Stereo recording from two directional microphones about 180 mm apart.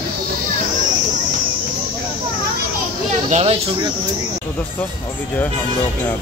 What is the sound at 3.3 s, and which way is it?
Speech, 30° right (ahead or behind).